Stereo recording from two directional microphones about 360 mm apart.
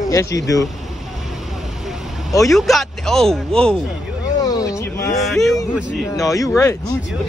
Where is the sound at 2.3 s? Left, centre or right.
Centre.